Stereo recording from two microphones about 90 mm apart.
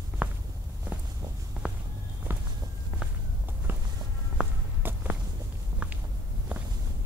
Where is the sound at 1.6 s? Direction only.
10° right (ahead or behind).